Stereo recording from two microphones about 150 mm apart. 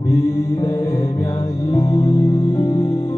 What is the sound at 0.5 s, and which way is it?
Music, 25° left (ahead or behind).